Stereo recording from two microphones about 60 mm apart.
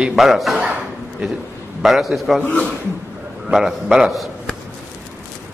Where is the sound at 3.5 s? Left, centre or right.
Centre.